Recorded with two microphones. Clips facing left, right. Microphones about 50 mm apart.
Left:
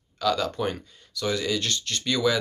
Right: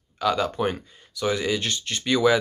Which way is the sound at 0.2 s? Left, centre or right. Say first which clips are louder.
Right 2 dB; centre.